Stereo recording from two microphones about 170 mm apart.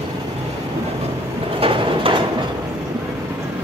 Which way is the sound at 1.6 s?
30° right (ahead or behind).